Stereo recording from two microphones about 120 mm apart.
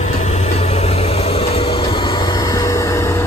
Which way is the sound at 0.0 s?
65° left (ahead or behind).